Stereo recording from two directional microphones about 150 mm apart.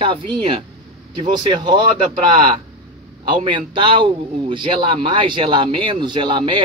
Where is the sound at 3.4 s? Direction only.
35° right (ahead or behind).